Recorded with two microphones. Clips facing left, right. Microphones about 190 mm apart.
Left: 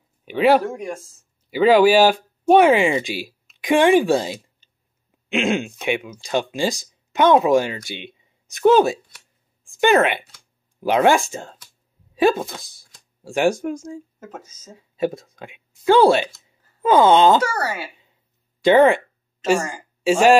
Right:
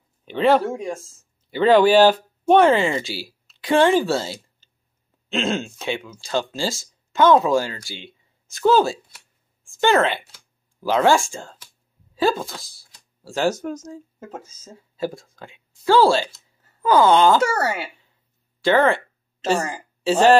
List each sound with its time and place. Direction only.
0.2 s speech: 10° left (ahead or behind)
0.7 s speech: 25° right (ahead or behind)
1.5 s speech: 10° left (ahead or behind)
17.4 s speech: 25° right (ahead or behind)
18.6 s speech: 15° left (ahead or behind)
20.0 s speech: 10° left (ahead or behind)